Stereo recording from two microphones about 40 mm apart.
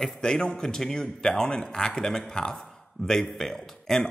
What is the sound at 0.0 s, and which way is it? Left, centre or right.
Speech, centre.